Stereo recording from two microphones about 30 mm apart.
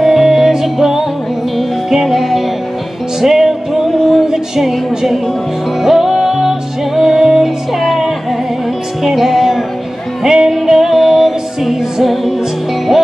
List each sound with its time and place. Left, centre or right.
0.0 s music: centre